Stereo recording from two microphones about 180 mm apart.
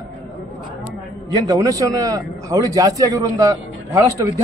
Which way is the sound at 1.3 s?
20° right (ahead or behind).